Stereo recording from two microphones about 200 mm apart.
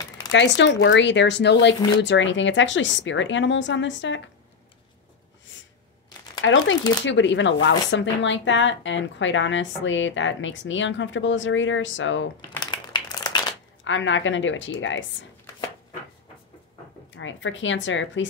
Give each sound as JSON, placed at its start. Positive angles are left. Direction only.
{"t": 0.3, "sound": "speech", "side_deg": 65}
{"t": 5.5, "sound": "a sound", "side_deg": 65}
{"t": 6.4, "sound": "speech", "side_deg": 70}
{"t": 6.8, "sound": "speech", "side_deg": 20}
{"t": 7.1, "sound": "speech", "side_deg": 65}
{"t": 12.4, "sound": "a sound", "side_deg": 20}
{"t": 13.8, "sound": "speech", "side_deg": 70}
{"t": 17.1, "sound": "speech", "side_deg": 70}